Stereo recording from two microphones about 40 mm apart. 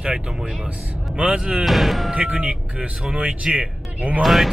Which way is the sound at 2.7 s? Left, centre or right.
Right.